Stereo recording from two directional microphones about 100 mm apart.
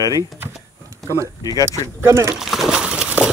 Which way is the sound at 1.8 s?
30° right (ahead or behind).